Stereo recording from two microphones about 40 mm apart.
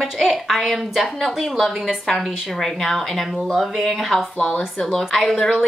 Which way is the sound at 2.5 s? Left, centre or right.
Centre.